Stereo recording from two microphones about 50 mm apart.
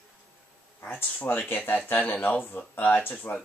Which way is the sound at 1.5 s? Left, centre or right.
Left.